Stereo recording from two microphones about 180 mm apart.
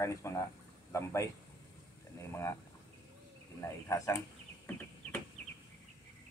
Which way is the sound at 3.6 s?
15° left (ahead or behind).